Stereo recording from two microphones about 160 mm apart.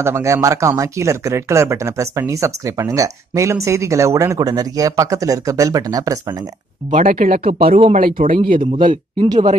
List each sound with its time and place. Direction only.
0.0 s speech: 15° right (ahead or behind)
6.9 s speech: 60° right (ahead or behind)
8.5 s speech: 30° right (ahead or behind)